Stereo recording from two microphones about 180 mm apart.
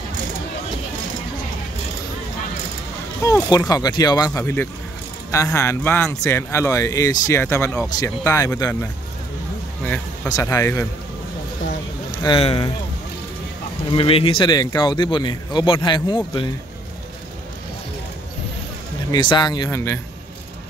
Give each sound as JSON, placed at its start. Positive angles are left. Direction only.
{"t": 3.3, "sound": "speech", "side_deg": 20}
{"t": 10.2, "sound": "speech", "side_deg": 20}
{"t": 12.2, "sound": "speech", "side_deg": 30}
{"t": 13.9, "sound": "speech", "side_deg": 30}
{"t": 19.1, "sound": "speech", "side_deg": 25}